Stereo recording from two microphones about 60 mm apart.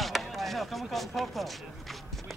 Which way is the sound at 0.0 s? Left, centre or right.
Centre.